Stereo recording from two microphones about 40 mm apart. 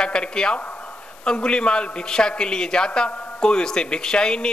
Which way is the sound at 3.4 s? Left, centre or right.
Centre.